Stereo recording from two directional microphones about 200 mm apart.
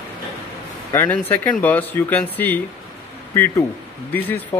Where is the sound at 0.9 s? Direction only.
10° left (ahead or behind).